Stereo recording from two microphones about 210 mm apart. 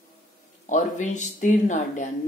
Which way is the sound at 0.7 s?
35° left (ahead or behind).